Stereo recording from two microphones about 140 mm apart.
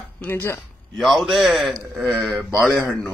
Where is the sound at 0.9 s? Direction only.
Centre (ahead or behind).